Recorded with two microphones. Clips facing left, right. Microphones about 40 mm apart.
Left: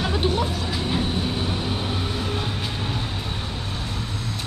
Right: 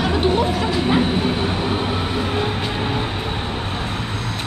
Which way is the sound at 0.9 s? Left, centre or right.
Right.